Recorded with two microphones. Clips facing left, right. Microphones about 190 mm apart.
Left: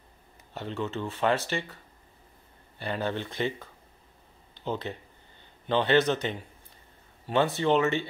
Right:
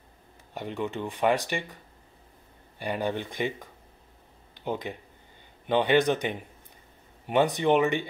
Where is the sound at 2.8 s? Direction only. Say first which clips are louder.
Right 1 dB; 15° right (ahead or behind).